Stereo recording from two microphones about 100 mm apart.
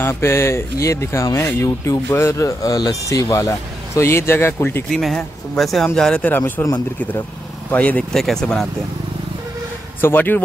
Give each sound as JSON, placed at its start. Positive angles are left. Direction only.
{"t": 0.0, "sound": "speech", "side_deg": 25}
{"t": 4.8, "sound": "speech", "side_deg": 5}
{"t": 8.1, "sound": "speech", "side_deg": 5}
{"t": 10.0, "sound": "speech", "side_deg": 20}